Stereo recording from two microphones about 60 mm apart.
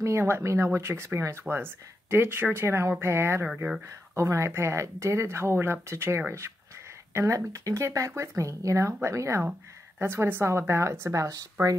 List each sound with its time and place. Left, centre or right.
0.0 s speech: right
7.2 s speech: right
9.9 s speech: right